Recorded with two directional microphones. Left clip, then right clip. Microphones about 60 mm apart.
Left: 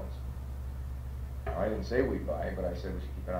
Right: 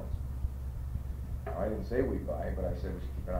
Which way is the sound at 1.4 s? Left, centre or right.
Right.